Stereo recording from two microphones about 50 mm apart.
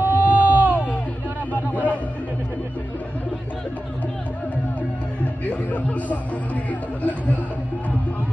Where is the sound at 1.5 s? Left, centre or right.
Left.